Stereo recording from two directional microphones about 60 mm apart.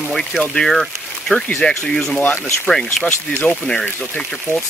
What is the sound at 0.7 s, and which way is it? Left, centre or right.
Speech, centre.